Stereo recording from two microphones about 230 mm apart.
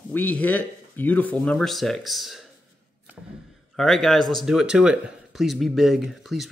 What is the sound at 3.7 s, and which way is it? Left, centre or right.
Speech, centre.